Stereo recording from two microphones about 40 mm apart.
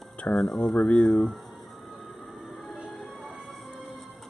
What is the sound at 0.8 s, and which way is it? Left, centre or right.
Speech, left.